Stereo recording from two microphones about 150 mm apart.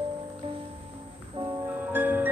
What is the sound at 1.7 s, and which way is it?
Music, 10° right (ahead or behind).